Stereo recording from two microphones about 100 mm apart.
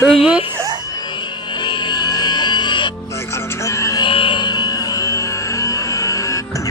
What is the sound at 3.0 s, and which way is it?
Music, 30° left (ahead or behind).